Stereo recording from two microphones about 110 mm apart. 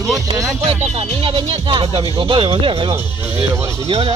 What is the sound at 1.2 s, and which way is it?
Speech, 55° right (ahead or behind).